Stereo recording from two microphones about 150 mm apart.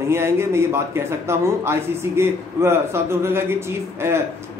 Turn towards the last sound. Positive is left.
turn(degrees=-15)  # may be behind; listen again after turning